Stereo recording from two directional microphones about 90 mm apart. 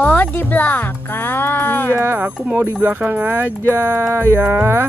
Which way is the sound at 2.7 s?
25° right (ahead or behind).